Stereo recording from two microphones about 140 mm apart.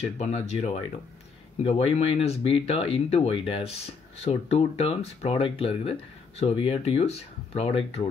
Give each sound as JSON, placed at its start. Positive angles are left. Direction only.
{"t": 0.2, "sound": "speech", "side_deg": 50}